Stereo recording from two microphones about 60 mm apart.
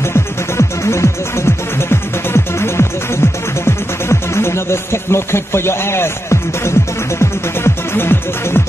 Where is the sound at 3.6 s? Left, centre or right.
Left.